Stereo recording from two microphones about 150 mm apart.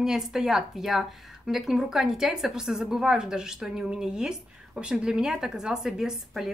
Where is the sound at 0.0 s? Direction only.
5° right (ahead or behind).